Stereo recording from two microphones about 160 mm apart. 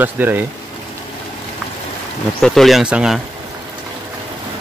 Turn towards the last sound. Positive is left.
turn(degrees=-5)  # may be behind; listen again after turning